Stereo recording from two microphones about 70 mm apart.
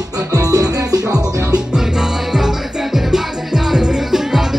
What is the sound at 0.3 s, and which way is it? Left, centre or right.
Music, right.